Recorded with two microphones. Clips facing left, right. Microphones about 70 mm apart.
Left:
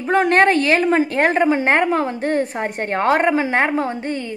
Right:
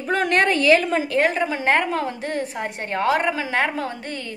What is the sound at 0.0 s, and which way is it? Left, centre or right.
A woman's voice, left.